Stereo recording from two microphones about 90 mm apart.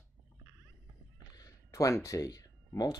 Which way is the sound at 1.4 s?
40° left (ahead or behind).